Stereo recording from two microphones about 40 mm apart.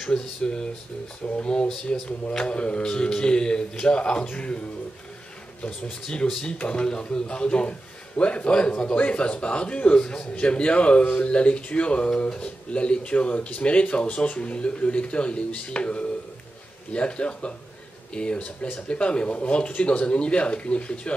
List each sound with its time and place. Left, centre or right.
0.0 s speech: left
6.0 s speech: left
14.0 s speech: left
14.3 s speech: left